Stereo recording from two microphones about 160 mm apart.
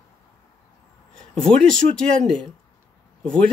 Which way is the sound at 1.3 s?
5° left (ahead or behind).